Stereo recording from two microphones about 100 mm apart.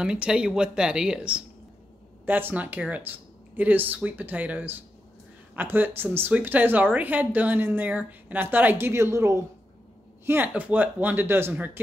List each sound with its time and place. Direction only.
0.0 s speech: 10° right (ahead or behind)
2.2 s speech: 20° right (ahead or behind)